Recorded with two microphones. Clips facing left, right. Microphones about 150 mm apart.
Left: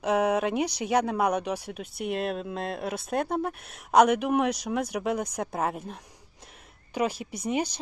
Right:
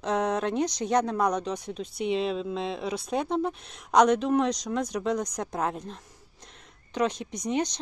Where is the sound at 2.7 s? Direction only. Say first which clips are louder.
Right 1 dB; 55° left (ahead or behind).